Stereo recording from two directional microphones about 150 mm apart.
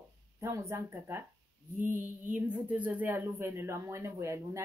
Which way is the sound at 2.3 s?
10° right (ahead or behind).